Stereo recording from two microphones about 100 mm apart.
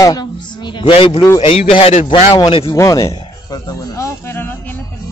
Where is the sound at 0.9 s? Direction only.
65° left (ahead or behind).